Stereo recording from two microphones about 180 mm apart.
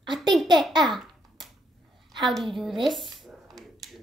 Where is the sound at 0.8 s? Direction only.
Centre (ahead or behind).